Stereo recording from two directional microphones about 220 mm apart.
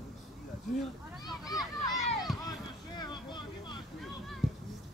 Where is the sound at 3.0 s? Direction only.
20° left (ahead or behind).